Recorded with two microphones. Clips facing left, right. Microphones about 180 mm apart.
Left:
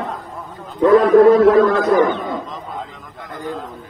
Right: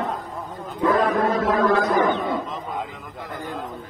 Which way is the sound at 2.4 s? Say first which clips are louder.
Even; 10° right (ahead or behind).